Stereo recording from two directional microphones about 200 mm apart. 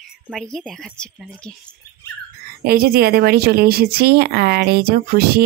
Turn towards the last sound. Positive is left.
turn(degrees=-50)  # may be behind; listen again after turning